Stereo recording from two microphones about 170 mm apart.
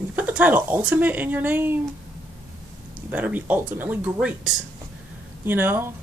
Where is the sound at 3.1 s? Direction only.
10° right (ahead or behind).